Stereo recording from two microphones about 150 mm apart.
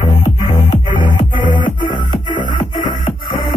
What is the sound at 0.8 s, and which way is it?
Music, 30° left (ahead or behind).